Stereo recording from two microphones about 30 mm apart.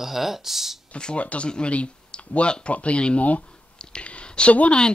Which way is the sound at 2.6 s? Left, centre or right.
Left.